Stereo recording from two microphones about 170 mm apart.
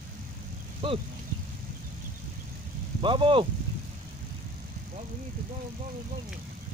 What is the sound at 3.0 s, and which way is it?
Speech, 30° right (ahead or behind).